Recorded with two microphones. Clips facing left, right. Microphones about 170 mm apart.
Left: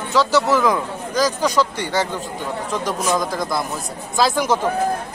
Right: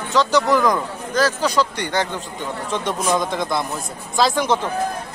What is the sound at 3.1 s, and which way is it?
A man's voice, centre (ahead or behind).